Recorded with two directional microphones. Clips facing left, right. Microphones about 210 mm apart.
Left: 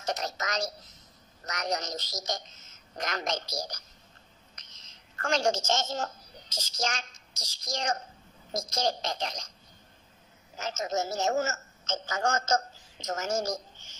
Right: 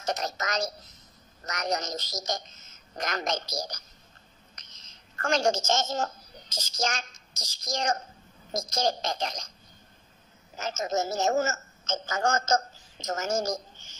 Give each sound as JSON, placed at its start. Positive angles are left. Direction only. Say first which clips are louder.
{"t": 0.0, "sound": "a woman's voice", "louder": "right 2 dB", "side_deg": -45}
{"t": 10.6, "sound": "a woman's voice", "louder": "right 2 dB", "side_deg": -45}